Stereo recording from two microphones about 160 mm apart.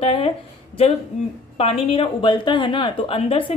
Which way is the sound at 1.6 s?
40° left (ahead or behind).